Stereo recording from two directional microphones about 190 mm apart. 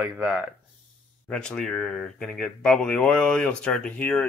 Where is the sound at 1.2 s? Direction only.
5° left (ahead or behind).